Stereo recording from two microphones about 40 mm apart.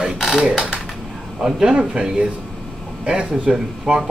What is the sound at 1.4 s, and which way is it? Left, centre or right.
Speech, centre.